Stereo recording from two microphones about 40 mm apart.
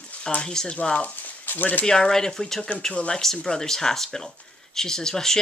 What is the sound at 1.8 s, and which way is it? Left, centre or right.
Speech, centre.